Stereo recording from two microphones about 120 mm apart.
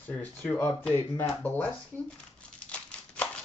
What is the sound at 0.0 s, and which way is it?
Speech, 15° left (ahead or behind).